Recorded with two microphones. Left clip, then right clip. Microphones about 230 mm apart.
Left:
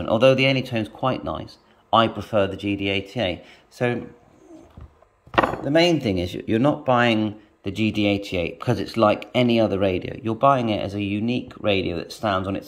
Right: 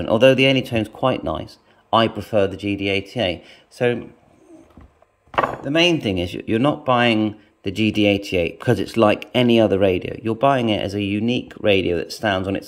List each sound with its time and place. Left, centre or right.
0.0 s speech: centre
5.7 s speech: centre